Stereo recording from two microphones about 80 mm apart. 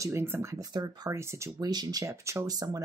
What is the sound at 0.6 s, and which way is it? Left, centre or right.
Speech, right.